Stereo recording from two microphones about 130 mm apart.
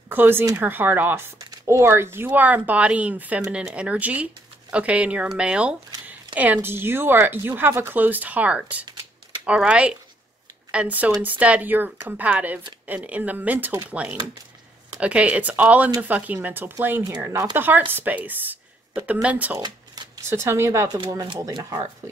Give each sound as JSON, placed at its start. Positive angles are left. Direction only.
{"t": 0.1, "sound": "speech", "side_deg": -15}